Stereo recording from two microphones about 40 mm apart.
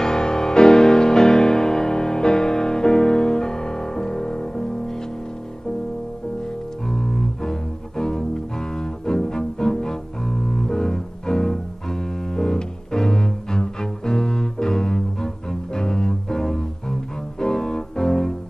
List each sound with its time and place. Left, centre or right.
0.0 s music: centre
6.9 s double bass: centre